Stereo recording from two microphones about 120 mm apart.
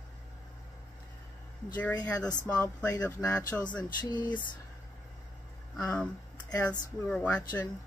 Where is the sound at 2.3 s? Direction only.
30° left (ahead or behind).